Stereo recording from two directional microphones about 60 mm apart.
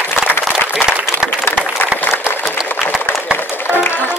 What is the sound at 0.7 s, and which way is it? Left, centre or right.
Applause, centre.